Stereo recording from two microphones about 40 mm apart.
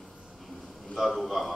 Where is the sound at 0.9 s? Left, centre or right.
Centre.